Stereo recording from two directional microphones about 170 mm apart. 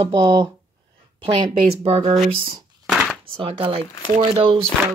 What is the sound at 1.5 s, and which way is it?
Speech, 35° right (ahead or behind).